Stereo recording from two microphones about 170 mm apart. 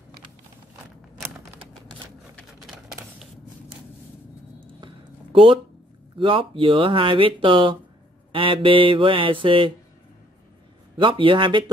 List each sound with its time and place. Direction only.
1.9 s typewriter: 5° left (ahead or behind)
4.7 s a sound: 30° right (ahead or behind)
6.1 s speech: 30° right (ahead or behind)
8.3 s mantra: 30° right (ahead or behind)
11.0 s speech: 30° right (ahead or behind)